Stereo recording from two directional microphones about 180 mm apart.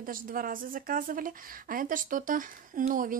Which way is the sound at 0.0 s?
50° right (ahead or behind).